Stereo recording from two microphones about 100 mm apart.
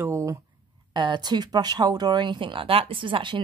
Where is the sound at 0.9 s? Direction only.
50° right (ahead or behind).